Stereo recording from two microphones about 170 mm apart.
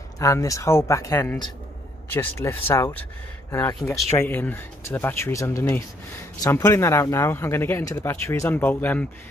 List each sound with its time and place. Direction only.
0.2 s speech: 20° left (ahead or behind)